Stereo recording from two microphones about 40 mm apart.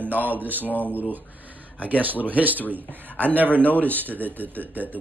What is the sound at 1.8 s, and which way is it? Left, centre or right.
Speech, right.